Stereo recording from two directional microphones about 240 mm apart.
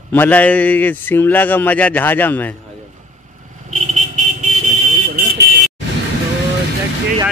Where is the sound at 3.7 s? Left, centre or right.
Right.